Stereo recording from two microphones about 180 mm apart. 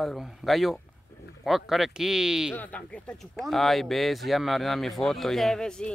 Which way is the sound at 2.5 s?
10° left (ahead or behind).